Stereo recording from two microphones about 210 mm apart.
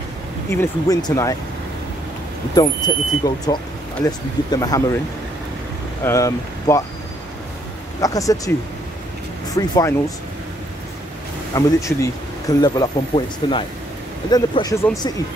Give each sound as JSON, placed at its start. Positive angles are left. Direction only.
{"t": 0.5, "sound": "speech", "side_deg": 15}
{"t": 2.5, "sound": "speech", "side_deg": 20}
{"t": 6.0, "sound": "speech", "side_deg": 15}
{"t": 8.0, "sound": "speech", "side_deg": 15}
{"t": 9.6, "sound": "speech", "side_deg": 15}
{"t": 11.5, "sound": "speech", "side_deg": 15}